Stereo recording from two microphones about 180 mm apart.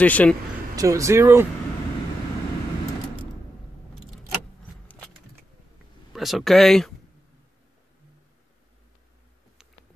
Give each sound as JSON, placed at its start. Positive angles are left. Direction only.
{"t": 0.0, "sound": "speech", "side_deg": 10}
{"t": 0.7, "sound": "speech", "side_deg": -15}
{"t": 6.1, "sound": "speech", "side_deg": 0}